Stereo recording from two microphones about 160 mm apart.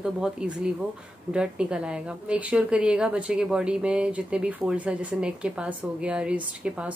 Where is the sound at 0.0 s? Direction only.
5° right (ahead or behind).